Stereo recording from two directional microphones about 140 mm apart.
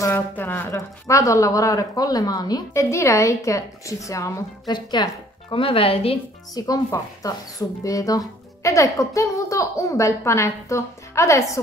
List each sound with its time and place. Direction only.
0.0 s speech: 15° left (ahead or behind); by 6.1 s 40° left (ahead or behind)
6.5 s speech: 25° left (ahead or behind)